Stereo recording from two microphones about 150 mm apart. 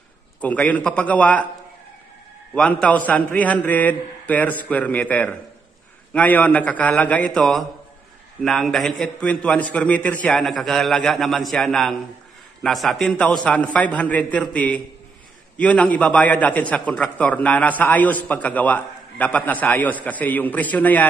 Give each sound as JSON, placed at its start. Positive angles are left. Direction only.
{"t": 0.4, "sound": "a man's voice", "side_deg": 10}
{"t": 2.5, "sound": "a man's voice", "side_deg": 5}